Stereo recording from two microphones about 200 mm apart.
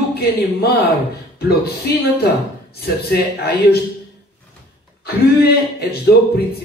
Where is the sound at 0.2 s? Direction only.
50° left (ahead or behind).